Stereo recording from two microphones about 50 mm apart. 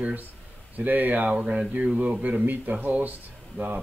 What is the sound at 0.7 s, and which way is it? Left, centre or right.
Speech, right.